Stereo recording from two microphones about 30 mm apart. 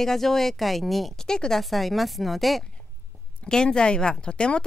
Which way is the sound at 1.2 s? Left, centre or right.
Left.